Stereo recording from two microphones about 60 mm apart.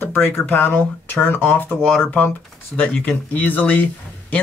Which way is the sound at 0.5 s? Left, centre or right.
Left.